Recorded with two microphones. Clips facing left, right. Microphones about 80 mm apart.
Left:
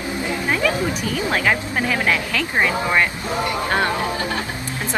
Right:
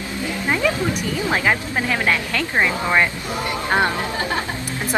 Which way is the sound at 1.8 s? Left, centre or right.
Centre.